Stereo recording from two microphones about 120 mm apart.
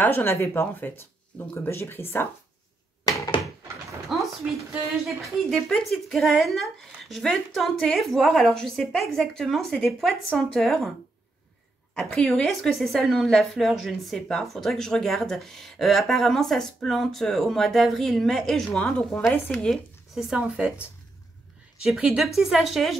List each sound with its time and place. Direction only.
0.0 s speech: 20° left (ahead or behind)
4.1 s a sound: centre (ahead or behind)
5.0 s a woman's voice: centre (ahead or behind)
11.9 s a woman's voice: 5° left (ahead or behind); by 20.8 s 10° right (ahead or behind)
21.8 s a woman's voice: 5° right (ahead or behind)